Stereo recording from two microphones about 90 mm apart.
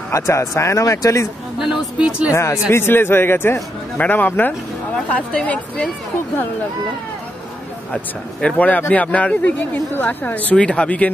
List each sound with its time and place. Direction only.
0.1 s speech: 30° left (ahead or behind)
1.6 s speech: 10° right (ahead or behind)
2.3 s a man's voice: 30° left (ahead or behind); by 5.9 s 10° left (ahead or behind)
7.9 s speech: 10° left (ahead or behind)